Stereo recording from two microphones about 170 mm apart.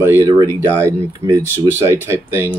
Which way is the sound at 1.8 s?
15° right (ahead or behind).